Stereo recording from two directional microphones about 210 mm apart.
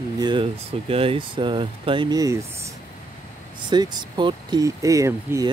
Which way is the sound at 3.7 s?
20° right (ahead or behind).